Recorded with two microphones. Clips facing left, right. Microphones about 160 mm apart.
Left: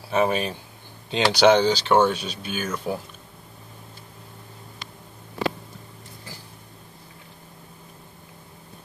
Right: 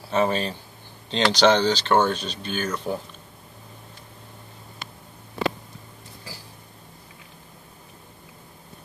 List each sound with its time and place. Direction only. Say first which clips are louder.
0.1 s speech: left 1 dB; 10° left (ahead or behind)